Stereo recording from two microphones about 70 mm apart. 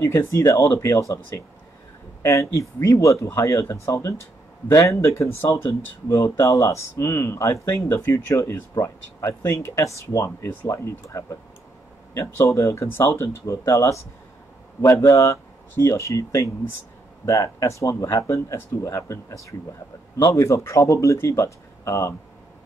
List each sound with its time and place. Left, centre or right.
0.0 s speech: left
2.8 s speech: left